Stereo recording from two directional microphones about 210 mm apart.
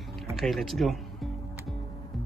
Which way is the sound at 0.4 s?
Centre (ahead or behind).